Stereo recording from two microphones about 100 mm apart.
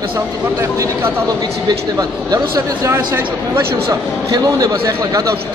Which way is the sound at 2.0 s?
40° right (ahead or behind).